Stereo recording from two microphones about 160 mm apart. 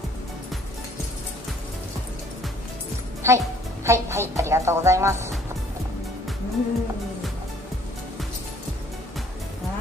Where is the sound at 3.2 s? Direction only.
15° right (ahead or behind).